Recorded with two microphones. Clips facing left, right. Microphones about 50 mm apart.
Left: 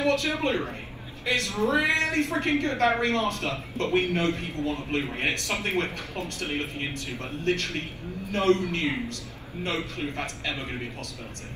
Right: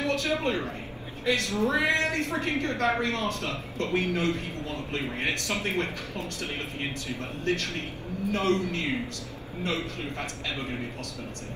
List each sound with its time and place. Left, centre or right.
0.0 s a woman's voice: left